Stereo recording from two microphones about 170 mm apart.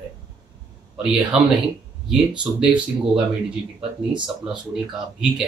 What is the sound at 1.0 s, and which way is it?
Speech, 5° right (ahead or behind).